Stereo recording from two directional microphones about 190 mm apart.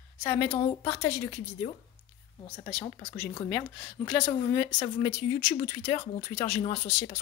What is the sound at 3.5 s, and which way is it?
Speech, 10° left (ahead or behind).